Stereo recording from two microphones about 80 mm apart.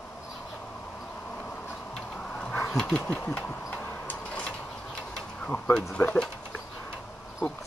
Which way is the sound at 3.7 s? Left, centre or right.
Centre.